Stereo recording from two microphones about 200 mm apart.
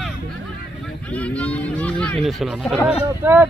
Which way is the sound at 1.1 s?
5° left (ahead or behind).